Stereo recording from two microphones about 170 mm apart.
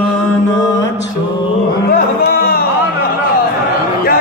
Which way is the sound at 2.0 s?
60° left (ahead or behind).